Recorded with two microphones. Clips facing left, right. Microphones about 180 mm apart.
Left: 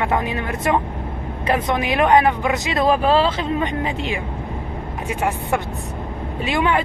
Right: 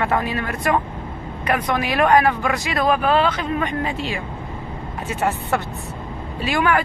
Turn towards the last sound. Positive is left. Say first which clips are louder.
# even
turn(degrees=20)  # may be behind; listen again after turning